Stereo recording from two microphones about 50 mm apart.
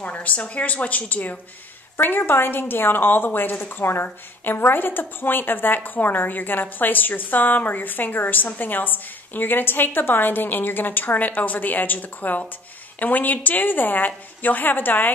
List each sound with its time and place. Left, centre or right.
0.0 s a woman's voice: left
2.0 s a woman's voice: left